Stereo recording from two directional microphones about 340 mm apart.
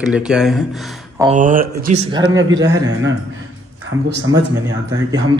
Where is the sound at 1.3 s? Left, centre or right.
Right.